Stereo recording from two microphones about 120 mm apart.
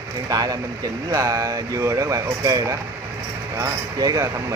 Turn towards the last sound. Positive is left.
turn(degrees=-30)  # may be behind; listen again after turning